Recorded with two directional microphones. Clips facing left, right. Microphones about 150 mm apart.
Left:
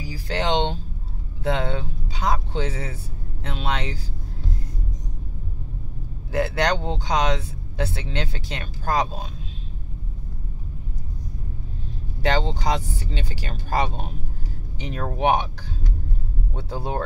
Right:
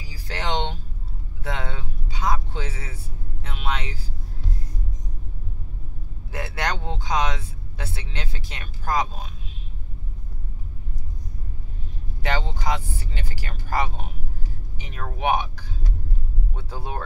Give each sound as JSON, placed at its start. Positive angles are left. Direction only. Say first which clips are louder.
{"t": 0.3, "sound": "speech", "louder": "left 4 dB", "side_deg": 20}
{"t": 6.3, "sound": "speech", "louder": "left 7 dB", "side_deg": 25}
{"t": 12.3, "sound": "speech", "louder": "left 4 dB", "side_deg": 30}
{"t": 16.5, "sound": "speech", "louder": "left 5 dB", "side_deg": 30}